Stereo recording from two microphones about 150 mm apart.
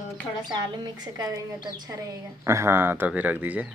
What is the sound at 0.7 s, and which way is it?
Speech, 30° right (ahead or behind).